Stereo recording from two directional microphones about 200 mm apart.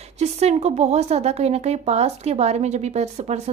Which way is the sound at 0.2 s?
35° right (ahead or behind).